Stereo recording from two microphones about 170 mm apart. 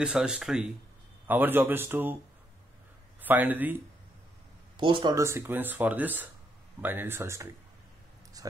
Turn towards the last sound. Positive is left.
turn(degrees=-15)  # may be behind; listen again after turning